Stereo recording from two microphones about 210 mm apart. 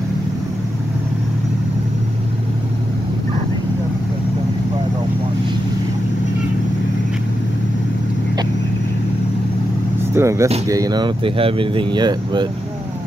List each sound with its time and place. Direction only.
10.1 s speech: 15° right (ahead or behind)